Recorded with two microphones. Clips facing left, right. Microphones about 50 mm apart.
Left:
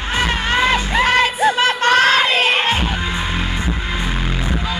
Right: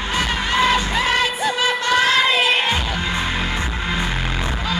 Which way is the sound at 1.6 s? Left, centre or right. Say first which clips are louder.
Left 2 dB; left.